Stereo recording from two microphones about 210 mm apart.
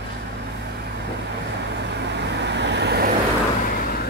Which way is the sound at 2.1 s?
55° right (ahead or behind).